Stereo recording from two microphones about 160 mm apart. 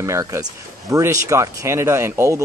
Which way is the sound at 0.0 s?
20° right (ahead or behind).